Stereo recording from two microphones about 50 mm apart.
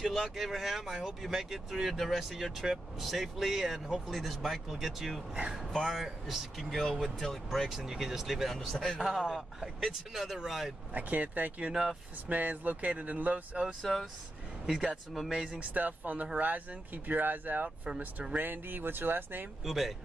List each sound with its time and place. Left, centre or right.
0.0 s speech: centre
8.5 s speech: centre
8.9 s speech: centre
10.9 s speech: right
11.7 s speech: centre
12.3 s speech: right
13.9 s speech: centre
15.1 s speech: centre
15.6 s speech: right
19.6 s speech: centre